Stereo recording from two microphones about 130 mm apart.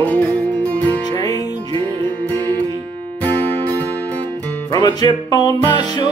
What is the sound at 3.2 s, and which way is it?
Music, 15° left (ahead or behind).